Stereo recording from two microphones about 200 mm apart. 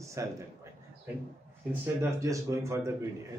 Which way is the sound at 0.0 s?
15° right (ahead or behind).